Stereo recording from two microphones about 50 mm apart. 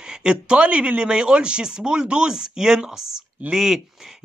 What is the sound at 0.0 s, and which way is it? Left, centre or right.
A man's voice, centre.